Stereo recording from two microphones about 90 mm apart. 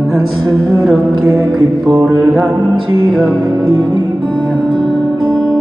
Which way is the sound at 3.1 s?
Centre (ahead or behind).